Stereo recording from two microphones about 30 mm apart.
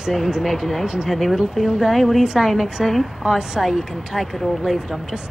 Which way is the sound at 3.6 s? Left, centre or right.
Centre.